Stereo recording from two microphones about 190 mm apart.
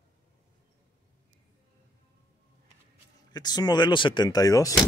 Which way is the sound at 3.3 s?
20° left (ahead or behind).